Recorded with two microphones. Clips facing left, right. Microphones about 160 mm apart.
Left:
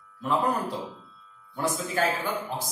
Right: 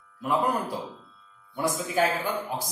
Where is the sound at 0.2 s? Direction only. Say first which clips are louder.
Even; 10° right (ahead or behind).